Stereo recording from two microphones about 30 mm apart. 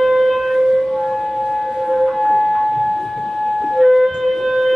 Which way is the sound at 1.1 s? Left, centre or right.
Centre.